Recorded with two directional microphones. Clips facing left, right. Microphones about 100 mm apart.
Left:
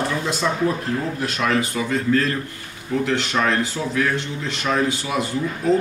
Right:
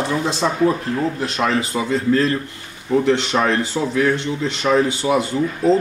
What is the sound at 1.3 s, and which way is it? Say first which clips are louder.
Speech: left 1 dB; 30° right (ahead or behind).